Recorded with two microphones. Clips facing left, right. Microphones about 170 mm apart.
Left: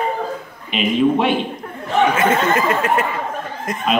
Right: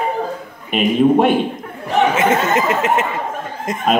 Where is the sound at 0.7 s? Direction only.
45° right (ahead or behind).